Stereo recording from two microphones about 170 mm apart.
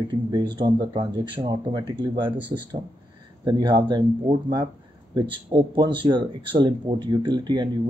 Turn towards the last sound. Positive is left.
turn(degrees=-25)  # may be behind; listen again after turning